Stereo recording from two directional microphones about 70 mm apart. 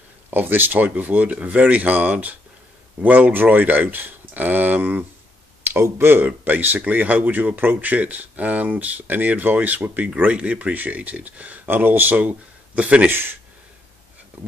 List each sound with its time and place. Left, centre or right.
0.3 s speech: right
13.1 s speech: right